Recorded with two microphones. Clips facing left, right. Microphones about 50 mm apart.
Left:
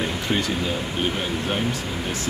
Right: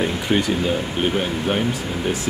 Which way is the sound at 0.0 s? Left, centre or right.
Centre.